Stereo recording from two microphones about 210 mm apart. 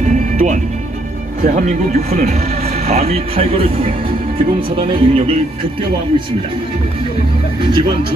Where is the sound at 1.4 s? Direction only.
40° right (ahead or behind).